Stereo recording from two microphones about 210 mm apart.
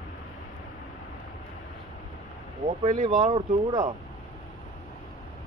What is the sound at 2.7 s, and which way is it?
Speech, 30° right (ahead or behind).